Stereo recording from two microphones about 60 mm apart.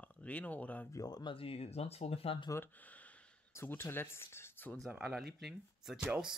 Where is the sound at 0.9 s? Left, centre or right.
Left.